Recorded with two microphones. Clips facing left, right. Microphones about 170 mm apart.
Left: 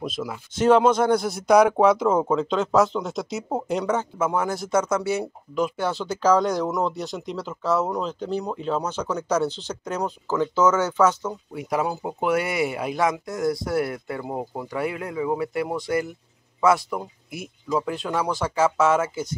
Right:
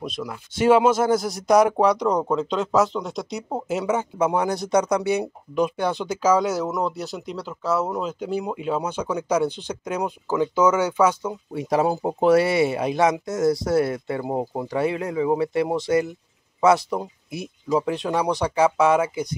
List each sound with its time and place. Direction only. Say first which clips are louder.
0.0 s speech: left 1 dB; 5° left (ahead or behind)
0.6 s speech: even; 10° right (ahead or behind)
11.5 s speech: right 5 dB; 30° right (ahead or behind)